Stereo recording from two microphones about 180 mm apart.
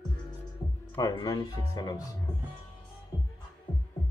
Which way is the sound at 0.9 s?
25° left (ahead or behind).